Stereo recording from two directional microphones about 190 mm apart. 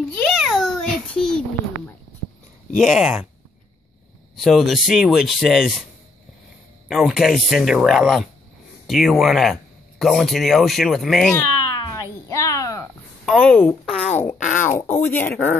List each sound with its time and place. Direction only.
0.1 s a sound: centre (ahead or behind)
2.8 s speech: centre (ahead or behind)
4.4 s speech: centre (ahead or behind)
6.9 s speech: centre (ahead or behind)
11.3 s meow: 15° left (ahead or behind)
13.2 s speech: 5° left (ahead or behind)